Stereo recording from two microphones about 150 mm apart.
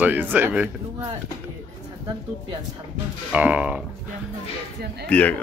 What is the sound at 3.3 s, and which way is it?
Speech, 10° right (ahead or behind).